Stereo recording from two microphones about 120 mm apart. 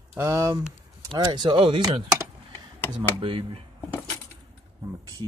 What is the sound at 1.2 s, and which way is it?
Speech, 40° right (ahead or behind).